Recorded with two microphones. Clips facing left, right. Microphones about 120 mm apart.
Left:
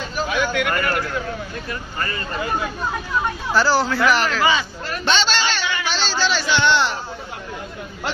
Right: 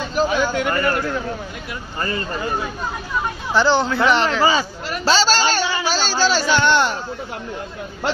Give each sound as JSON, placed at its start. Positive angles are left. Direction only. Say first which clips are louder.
{"t": 0.1, "sound": "a sound", "louder": "right 3 dB", "side_deg": -30}
{"t": 2.0, "sound": "speech", "louder": "right 3 dB", "side_deg": -25}
{"t": 3.5, "sound": "speech", "louder": "right 2 dB", "side_deg": -20}